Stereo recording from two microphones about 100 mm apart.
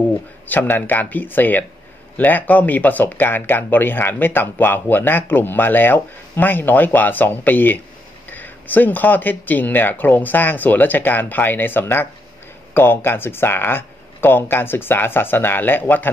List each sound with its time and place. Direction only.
0.5 s speech: 20° left (ahead or behind)